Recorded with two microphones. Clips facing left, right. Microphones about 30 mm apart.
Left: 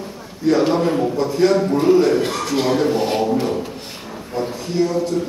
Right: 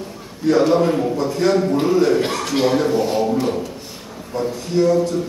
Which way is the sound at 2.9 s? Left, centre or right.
Left.